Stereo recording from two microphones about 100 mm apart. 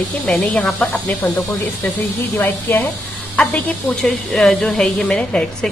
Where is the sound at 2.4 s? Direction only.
20° left (ahead or behind).